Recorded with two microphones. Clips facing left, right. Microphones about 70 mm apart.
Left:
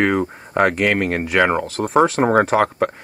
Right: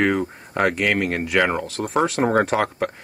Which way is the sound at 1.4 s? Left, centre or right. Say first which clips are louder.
Left 4 dB; centre.